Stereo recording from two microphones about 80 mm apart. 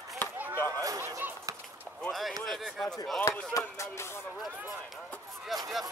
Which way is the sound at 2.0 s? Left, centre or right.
Centre.